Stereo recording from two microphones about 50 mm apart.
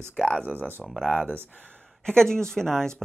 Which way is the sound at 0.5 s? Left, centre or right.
Right.